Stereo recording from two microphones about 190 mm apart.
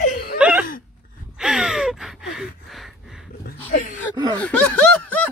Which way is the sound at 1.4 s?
Centre (ahead or behind).